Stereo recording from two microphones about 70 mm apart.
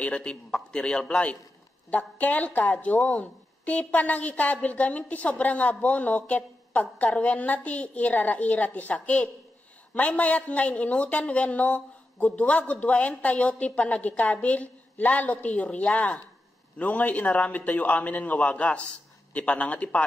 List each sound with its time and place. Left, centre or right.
0.0 s a man's voice: centre